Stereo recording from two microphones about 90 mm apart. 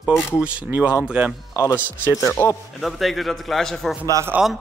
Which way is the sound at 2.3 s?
30° left (ahead or behind).